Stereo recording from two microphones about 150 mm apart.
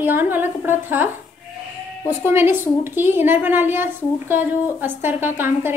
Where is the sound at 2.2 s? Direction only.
15° right (ahead or behind).